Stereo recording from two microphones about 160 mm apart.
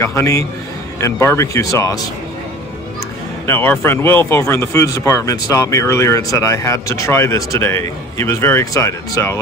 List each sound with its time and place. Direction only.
0.0 s speech: 20° left (ahead or behind)
3.4 s speech: 15° left (ahead or behind)